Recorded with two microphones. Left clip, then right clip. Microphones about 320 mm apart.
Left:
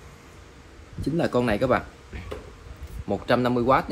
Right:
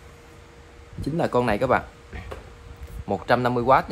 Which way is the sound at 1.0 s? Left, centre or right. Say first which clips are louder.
Right 1 dB; right.